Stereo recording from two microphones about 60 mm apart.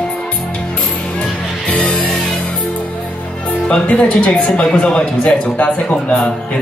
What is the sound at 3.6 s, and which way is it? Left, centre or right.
Speech, centre.